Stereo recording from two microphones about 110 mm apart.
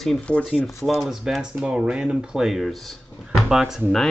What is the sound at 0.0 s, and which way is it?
Speech, 5° left (ahead or behind).